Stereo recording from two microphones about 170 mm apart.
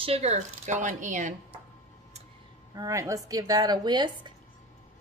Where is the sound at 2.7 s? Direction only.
20° right (ahead or behind).